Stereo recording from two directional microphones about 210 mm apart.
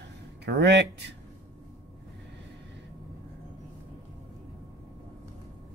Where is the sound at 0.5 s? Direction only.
55° right (ahead or behind).